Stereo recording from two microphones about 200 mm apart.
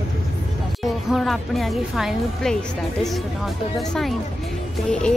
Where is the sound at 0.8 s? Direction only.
Centre (ahead or behind).